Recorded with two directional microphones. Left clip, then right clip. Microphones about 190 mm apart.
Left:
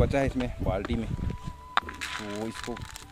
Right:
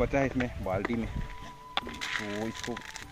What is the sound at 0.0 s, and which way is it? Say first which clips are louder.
Speech: left 1 dB; 10° left (ahead or behind).